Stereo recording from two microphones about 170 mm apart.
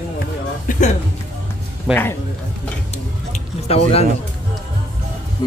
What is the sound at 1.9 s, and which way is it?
Speech, 5° right (ahead or behind).